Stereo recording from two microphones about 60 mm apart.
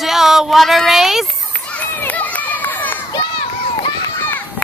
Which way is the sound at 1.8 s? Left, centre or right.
Left.